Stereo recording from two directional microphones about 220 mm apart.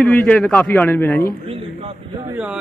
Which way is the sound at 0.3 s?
5° left (ahead or behind).